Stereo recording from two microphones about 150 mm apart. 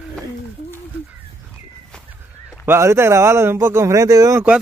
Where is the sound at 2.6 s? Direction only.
15° right (ahead or behind).